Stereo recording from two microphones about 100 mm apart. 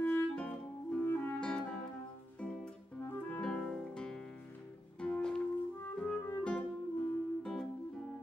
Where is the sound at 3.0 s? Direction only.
20° left (ahead or behind).